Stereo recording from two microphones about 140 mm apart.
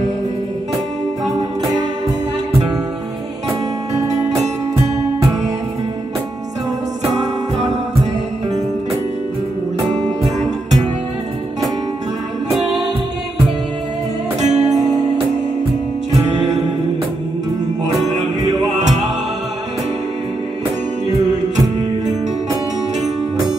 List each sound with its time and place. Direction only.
1.2 s music: centre (ahead or behind)
7.5 s music: 55° right (ahead or behind)
9.9 s music: centre (ahead or behind)
12.4 s music: centre (ahead or behind)
14.4 s music: 55° right (ahead or behind)